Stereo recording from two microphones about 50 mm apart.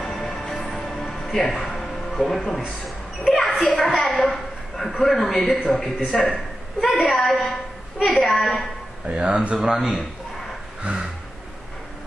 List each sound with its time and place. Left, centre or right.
0.0 s music: centre
1.5 s a man's voice: centre
3.3 s a sound: centre
4.1 s a woman's voice: centre
9.0 s speech: right
10.8 s a sound: right